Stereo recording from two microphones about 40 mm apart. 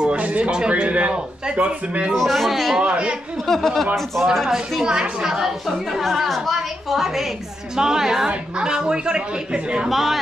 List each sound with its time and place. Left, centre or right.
0.0 s speech: right
2.1 s a woman's voice: centre
2.8 s a woman's voice: right
3.4 s a woman's voice: centre
4.8 s a woman's voice: centre
9.8 s a woman's voice: centre